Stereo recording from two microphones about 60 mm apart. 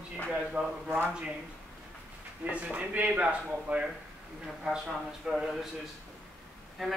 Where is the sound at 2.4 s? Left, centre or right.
Right.